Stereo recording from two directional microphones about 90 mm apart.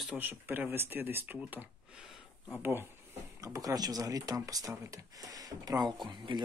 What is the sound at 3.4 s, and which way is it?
Speech, 40° right (ahead or behind).